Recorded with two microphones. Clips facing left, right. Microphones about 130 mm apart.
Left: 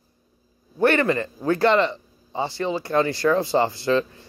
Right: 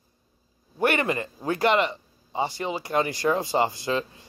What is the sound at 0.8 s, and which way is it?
Speech, 15° right (ahead or behind).